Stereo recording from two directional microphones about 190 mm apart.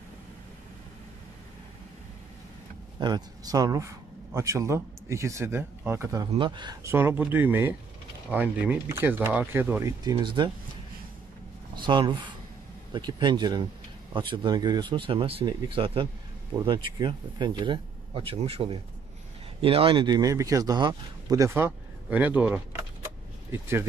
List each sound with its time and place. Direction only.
3.0 s speech: 20° right (ahead or behind)
6.3 s speech: 25° right (ahead or behind)
10.1 s speech: 25° right (ahead or behind)
11.8 s speech: 25° right (ahead or behind)